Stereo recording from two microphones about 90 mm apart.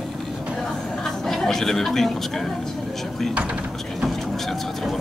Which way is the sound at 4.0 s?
Centre (ahead or behind).